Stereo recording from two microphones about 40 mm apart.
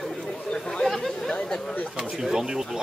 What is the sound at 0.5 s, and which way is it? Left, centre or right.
Chatter, centre.